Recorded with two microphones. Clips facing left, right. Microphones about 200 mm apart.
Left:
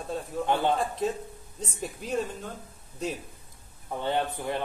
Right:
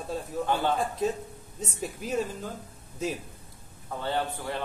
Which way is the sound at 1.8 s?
5° right (ahead or behind).